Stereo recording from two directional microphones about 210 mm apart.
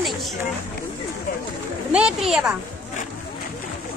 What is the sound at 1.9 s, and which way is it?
Speech, 5° right (ahead or behind).